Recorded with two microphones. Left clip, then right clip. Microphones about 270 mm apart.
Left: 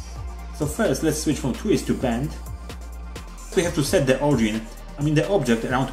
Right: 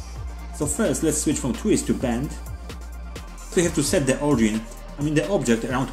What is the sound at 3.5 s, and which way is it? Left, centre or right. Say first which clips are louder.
Speech: left 1 dB; centre.